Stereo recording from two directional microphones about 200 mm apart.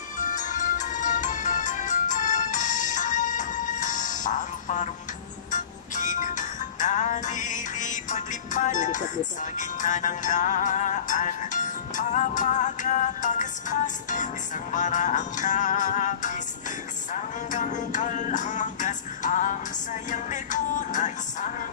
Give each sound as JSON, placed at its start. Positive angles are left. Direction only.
{"t": 0.2, "sound": "music", "side_deg": 40}